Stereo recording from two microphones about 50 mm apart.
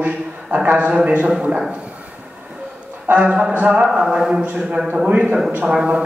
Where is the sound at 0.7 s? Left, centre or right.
Right.